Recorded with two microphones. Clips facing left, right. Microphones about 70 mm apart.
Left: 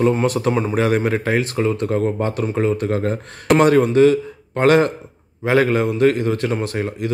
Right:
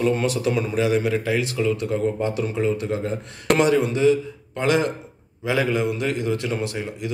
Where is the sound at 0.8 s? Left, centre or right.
Left.